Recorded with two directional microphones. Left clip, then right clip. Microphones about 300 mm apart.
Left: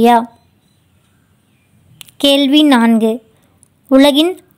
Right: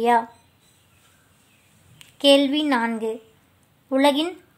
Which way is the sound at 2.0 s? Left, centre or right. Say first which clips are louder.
Left 5 dB; left.